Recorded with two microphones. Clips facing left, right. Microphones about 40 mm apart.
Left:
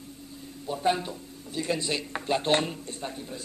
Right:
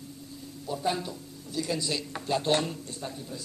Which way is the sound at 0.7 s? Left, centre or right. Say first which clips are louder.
Left 3 dB; left.